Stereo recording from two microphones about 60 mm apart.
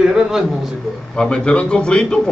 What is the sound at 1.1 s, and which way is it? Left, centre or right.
A man's voice, centre.